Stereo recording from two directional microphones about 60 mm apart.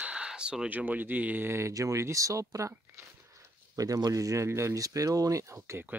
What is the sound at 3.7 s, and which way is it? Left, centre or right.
Speech, right.